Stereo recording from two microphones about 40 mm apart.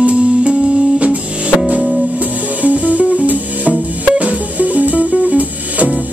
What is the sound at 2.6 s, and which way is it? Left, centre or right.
Music, right.